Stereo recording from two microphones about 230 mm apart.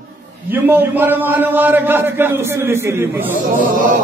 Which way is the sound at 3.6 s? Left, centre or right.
Right.